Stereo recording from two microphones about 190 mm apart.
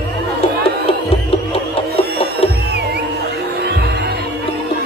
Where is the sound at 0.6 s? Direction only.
30° left (ahead or behind).